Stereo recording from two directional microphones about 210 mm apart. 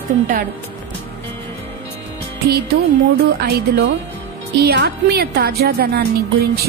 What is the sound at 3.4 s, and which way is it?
A woman's voice, 50° right (ahead or behind).